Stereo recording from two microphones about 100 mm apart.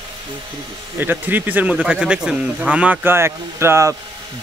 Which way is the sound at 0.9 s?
20° right (ahead or behind).